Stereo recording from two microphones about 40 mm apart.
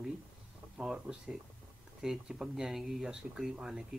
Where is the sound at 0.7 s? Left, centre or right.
Centre.